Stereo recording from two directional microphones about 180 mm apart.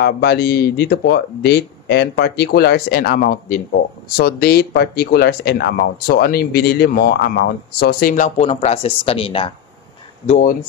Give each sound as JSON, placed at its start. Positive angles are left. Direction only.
{"t": 0.0, "sound": "speech", "side_deg": 65}